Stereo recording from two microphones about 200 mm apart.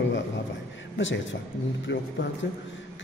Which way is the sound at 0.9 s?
65° left (ahead or behind).